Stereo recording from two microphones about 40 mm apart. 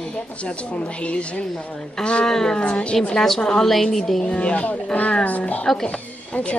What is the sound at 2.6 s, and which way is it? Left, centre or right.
Speech, left.